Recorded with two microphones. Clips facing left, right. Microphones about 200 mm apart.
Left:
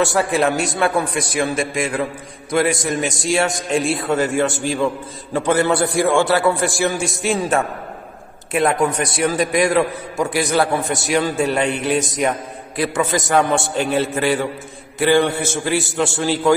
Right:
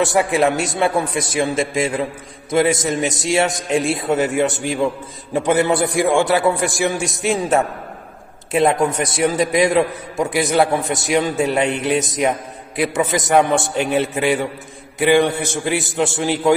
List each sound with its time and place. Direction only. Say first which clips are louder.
0.1 s a man's voice: right 1 dB; 20° right (ahead or behind)